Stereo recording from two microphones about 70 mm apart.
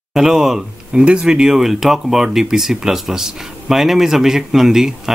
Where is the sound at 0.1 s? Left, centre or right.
Centre.